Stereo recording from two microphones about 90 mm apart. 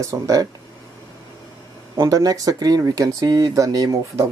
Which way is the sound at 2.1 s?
40° right (ahead or behind).